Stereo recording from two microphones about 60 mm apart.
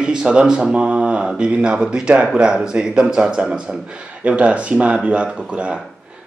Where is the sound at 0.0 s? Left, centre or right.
Centre.